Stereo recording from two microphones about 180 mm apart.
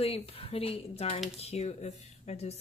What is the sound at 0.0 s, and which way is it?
Speech, 35° left (ahead or behind).